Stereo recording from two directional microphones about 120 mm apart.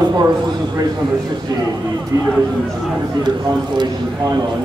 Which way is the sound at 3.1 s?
40° right (ahead or behind).